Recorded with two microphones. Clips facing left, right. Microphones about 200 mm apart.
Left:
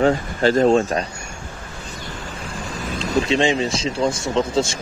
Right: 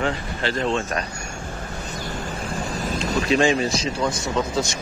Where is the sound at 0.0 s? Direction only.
45° left (ahead or behind).